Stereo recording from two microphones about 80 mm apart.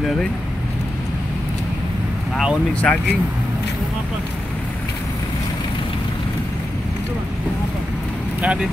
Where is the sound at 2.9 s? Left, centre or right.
Centre.